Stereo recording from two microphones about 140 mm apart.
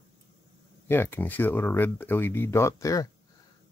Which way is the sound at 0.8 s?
15° left (ahead or behind).